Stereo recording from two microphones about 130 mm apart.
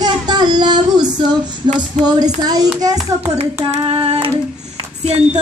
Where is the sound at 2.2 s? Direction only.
30° right (ahead or behind).